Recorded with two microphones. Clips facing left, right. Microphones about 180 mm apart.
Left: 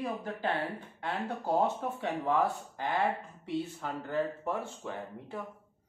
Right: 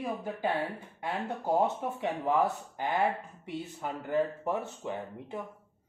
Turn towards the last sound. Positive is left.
turn(degrees=-20)  # may be behind; listen again after turning